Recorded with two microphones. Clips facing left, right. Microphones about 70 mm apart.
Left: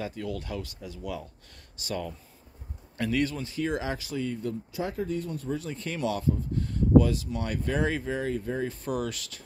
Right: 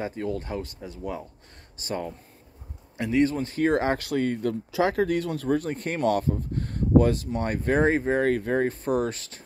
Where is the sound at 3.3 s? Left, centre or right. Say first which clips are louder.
Right 7 dB; right.